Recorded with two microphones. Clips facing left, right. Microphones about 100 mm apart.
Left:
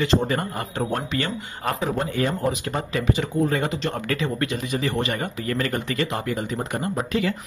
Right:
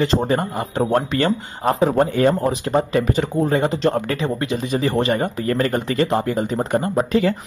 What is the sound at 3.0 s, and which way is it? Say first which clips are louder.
Speech: right 3 dB; 45° right (ahead or behind).